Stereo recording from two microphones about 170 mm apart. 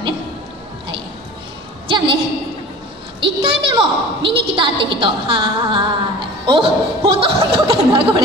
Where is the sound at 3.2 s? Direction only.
30° right (ahead or behind).